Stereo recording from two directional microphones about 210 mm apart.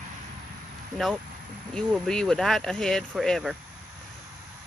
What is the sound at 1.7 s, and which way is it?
Speech, 5° left (ahead or behind).